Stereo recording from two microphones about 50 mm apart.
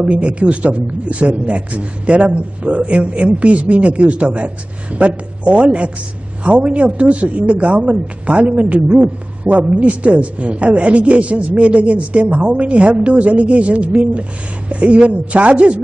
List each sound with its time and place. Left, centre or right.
0.0 s speech: right